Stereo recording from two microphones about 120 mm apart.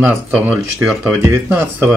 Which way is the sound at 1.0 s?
20° right (ahead or behind).